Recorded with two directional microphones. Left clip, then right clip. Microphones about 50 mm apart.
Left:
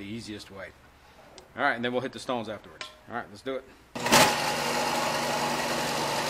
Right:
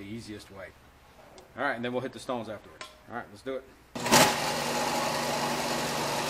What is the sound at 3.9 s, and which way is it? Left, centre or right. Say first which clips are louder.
Sewing machine: left 1 dB; centre.